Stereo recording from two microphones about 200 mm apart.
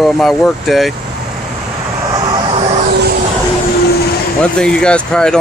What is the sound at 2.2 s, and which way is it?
Vehicle, 30° right (ahead or behind).